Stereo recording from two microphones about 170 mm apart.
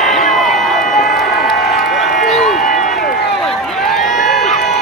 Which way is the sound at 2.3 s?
Centre (ahead or behind).